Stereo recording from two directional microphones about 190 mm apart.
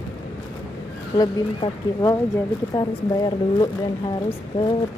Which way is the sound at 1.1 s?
20° left (ahead or behind).